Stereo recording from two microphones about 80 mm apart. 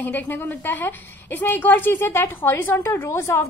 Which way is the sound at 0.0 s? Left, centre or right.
Left.